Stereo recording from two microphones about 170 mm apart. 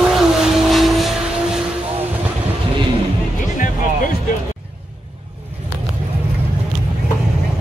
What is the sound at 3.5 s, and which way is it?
Music, 50° left (ahead or behind).